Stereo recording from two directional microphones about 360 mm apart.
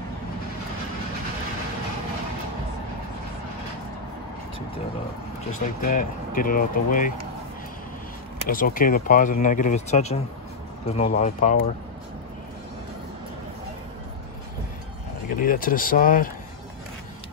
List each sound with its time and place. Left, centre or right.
5.8 s speech: left
8.5 s speech: left
15.2 s speech: left